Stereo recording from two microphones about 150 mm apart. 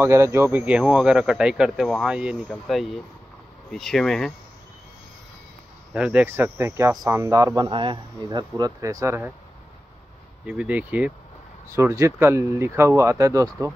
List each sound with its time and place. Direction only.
0.0 s speech: 15° right (ahead or behind)
2.4 s speech: 5° left (ahead or behind)
5.9 s speech: 10° right (ahead or behind)
10.4 s speech: 10° right (ahead or behind)
11.7 s speech: 20° right (ahead or behind)